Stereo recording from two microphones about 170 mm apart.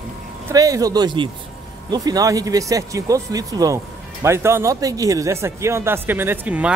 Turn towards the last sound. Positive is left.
turn(degrees=-10)  # may be behind; listen again after turning